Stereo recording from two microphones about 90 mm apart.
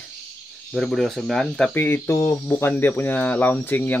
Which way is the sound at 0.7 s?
5° left (ahead or behind).